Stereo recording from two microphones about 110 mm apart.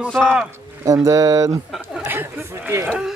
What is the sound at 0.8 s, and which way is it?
Speech, 30° right (ahead or behind).